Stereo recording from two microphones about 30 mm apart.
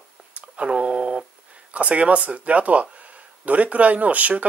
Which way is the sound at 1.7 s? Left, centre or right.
Right.